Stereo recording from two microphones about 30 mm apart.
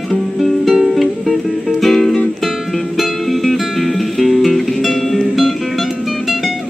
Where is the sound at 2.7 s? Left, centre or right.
Centre.